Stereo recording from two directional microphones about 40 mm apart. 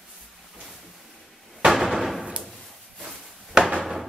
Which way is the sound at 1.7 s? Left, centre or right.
Centre.